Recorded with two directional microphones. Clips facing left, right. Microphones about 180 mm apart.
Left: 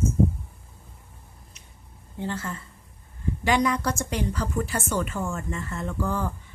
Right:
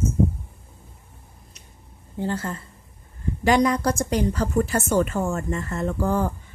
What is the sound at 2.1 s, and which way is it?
A woman's voice, 35° right (ahead or behind).